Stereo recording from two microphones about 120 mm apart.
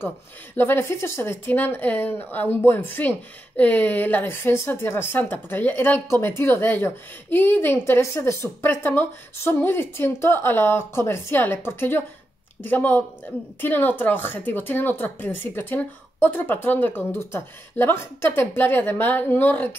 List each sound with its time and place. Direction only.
0.6 s speech: 20° left (ahead or behind)